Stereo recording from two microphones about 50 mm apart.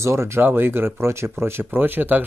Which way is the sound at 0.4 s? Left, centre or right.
Right.